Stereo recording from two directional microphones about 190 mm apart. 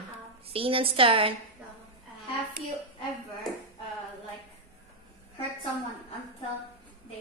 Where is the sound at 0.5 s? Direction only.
30° right (ahead or behind).